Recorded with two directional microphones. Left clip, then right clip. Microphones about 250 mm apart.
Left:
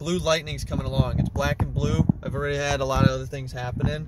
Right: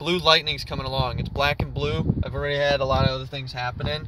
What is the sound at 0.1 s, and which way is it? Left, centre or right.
Speech, centre.